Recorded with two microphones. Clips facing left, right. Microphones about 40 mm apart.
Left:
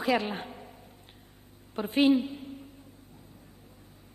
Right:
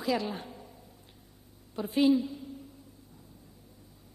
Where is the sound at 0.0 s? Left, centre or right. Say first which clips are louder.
Left 3 dB; left.